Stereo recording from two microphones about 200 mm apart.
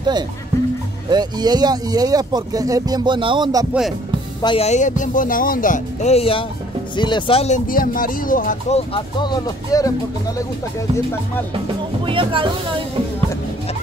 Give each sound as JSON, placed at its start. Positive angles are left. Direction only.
{"t": 1.1, "sound": "speech", "side_deg": -20}
{"t": 4.4, "sound": "speech", "side_deg": 25}
{"t": 12.1, "sound": "speech", "side_deg": -25}